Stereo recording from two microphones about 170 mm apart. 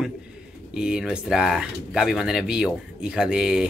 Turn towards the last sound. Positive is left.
turn(degrees=-5)  # may be behind; listen again after turning